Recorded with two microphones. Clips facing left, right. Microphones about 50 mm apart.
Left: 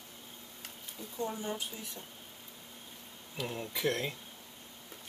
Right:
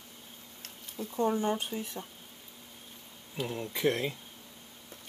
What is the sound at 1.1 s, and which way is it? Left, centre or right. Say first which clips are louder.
Speech: right 8 dB; right.